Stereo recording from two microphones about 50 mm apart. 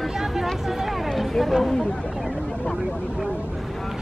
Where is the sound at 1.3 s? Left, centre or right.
Centre.